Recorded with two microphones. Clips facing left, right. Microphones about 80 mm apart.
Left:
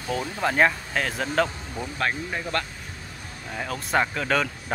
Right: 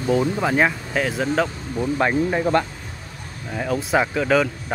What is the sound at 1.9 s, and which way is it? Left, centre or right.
Speech, centre.